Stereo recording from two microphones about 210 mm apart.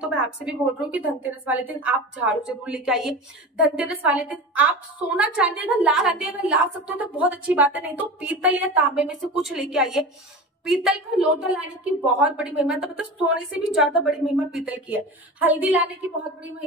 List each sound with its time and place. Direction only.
0.0 s a woman's voice: 5° right (ahead or behind)